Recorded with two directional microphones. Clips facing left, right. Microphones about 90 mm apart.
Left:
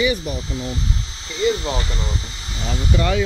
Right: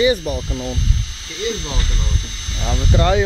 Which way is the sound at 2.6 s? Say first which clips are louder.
Right 3 dB; 35° right (ahead or behind).